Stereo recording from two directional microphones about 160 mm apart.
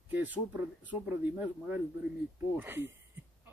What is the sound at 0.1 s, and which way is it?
Speech, 10° right (ahead or behind).